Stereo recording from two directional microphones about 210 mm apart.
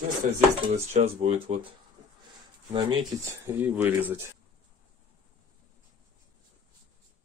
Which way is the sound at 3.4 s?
10° right (ahead or behind).